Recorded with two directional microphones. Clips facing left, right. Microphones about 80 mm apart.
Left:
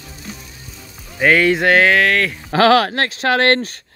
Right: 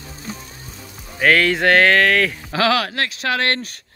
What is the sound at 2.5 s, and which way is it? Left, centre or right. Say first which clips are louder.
Speech: left 8 dB; left.